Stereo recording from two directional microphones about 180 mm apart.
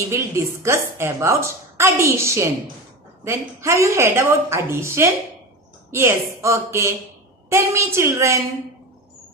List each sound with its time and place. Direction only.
0.1 s a woman's voice: 15° right (ahead or behind)